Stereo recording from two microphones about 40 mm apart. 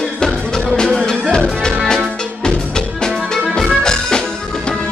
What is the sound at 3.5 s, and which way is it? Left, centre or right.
Music, centre.